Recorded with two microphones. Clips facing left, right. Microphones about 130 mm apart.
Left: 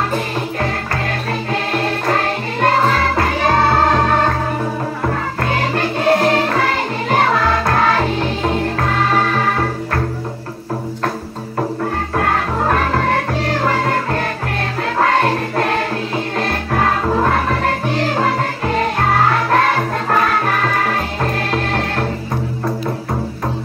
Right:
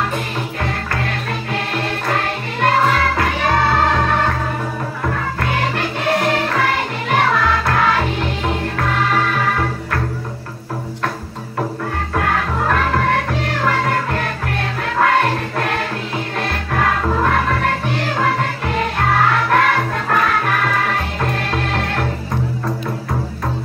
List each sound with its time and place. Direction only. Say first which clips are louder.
1.5 s music: left 3 dB; 35° left (ahead or behind)
12.2 s music: left 1 dB; 30° left (ahead or behind)
16.3 s music: left 2 dB; 30° left (ahead or behind)
19.5 s music: left 1 dB; 30° left (ahead or behind)